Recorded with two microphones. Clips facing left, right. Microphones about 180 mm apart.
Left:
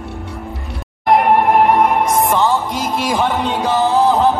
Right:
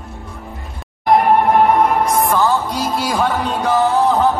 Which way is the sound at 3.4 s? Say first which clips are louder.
Even; centre (ahead or behind).